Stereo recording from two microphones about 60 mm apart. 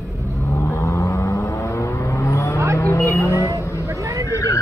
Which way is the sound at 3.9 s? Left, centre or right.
Right.